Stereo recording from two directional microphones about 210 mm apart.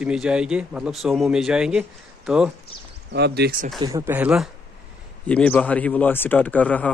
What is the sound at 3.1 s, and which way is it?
Speech, 50° right (ahead or behind).